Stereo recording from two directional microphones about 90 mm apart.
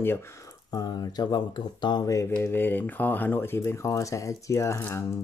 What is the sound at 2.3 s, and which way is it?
Speech, 25° left (ahead or behind).